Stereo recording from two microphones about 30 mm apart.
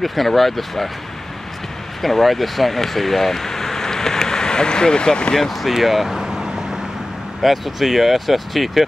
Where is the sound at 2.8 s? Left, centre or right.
Centre; by 5.3 s left.